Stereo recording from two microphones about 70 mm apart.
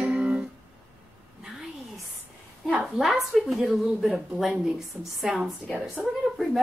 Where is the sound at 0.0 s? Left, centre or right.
Centre.